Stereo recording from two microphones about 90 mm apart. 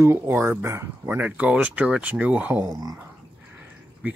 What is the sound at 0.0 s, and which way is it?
Speech, 30° right (ahead or behind).